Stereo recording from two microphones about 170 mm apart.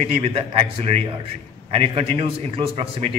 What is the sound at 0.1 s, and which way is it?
A man's voice, 35° right (ahead or behind).